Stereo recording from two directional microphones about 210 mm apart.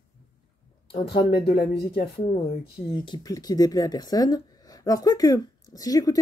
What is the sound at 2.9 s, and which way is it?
Speech, 20° left (ahead or behind).